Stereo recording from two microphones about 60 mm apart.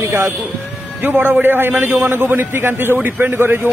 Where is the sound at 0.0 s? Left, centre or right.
Right.